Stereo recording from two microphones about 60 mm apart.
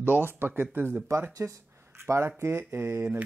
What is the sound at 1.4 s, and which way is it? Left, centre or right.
Speech, right.